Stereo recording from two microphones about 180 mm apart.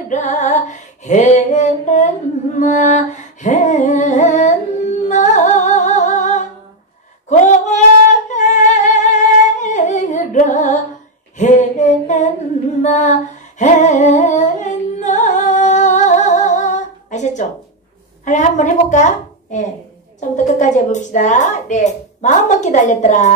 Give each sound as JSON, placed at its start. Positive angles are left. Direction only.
{"t": 0.1, "sound": "a woman's voice", "side_deg": 40}
{"t": 2.6, "sound": "singing", "side_deg": 45}
{"t": 7.2, "sound": "a sound", "side_deg": 40}
{"t": 8.3, "sound": "singing", "side_deg": 40}
{"t": 11.3, "sound": "a sound", "side_deg": 40}
{"t": 12.8, "sound": "humming", "side_deg": 40}
{"t": 18.2, "sound": "a woman's voice", "side_deg": 45}